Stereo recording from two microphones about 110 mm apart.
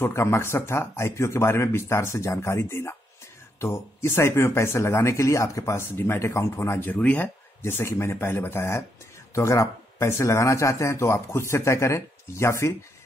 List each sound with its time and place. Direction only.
0.0 s speech: 25° left (ahead or behind)